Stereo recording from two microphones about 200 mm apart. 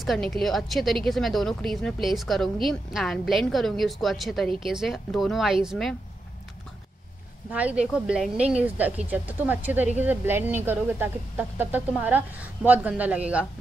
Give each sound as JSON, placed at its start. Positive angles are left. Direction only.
{"t": 0.0, "sound": "speech", "side_deg": 0}
{"t": 7.5, "sound": "speech", "side_deg": -5}